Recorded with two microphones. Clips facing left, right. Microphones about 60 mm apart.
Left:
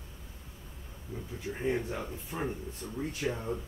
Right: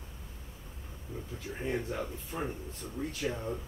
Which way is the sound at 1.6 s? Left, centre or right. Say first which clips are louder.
Left 2 dB; centre.